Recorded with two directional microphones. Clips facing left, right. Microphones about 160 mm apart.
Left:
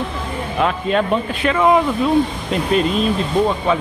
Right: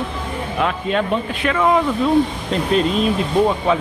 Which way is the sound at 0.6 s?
35° left (ahead or behind).